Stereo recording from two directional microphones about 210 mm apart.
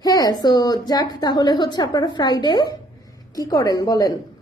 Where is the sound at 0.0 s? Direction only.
15° left (ahead or behind).